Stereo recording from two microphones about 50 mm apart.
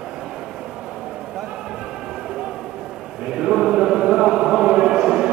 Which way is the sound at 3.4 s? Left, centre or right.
Centre.